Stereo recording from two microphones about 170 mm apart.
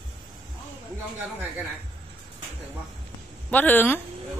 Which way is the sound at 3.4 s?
10° left (ahead or behind).